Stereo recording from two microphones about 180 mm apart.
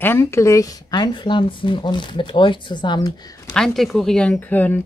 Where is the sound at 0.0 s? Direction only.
15° left (ahead or behind).